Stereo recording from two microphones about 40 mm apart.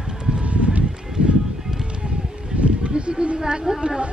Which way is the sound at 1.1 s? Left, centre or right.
Centre.